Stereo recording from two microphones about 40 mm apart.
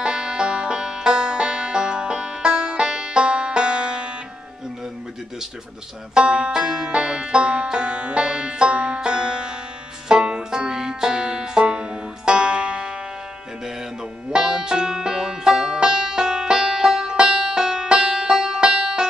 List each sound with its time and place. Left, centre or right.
0.0 s music: right
6.1 s banjo: right
10.0 s music: right
11.6 s banjo: right
14.3 s banjo: centre